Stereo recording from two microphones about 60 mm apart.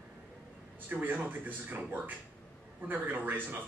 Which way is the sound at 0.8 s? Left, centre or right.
Right.